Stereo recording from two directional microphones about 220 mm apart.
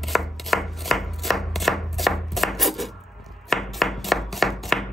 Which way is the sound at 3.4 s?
Centre (ahead or behind).